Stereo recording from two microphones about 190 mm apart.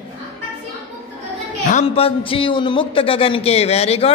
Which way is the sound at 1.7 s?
35° left (ahead or behind).